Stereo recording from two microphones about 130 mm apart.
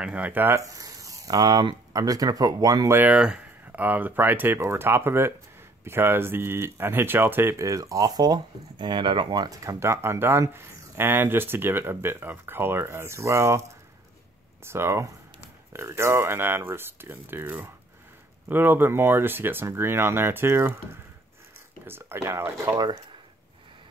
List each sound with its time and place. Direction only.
0.0 s speech: 10° right (ahead or behind); by 3.0 s 30° right (ahead or behind)
3.0 s speech: 10° right (ahead or behind)